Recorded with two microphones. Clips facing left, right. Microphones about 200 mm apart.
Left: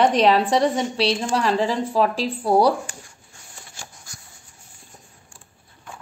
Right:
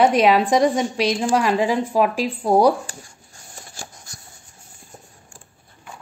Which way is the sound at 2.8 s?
40° right (ahead or behind).